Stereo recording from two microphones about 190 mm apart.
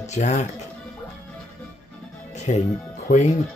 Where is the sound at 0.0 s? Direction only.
40° left (ahead or behind).